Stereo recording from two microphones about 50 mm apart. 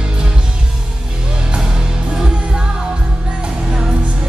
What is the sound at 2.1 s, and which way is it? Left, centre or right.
Music, centre.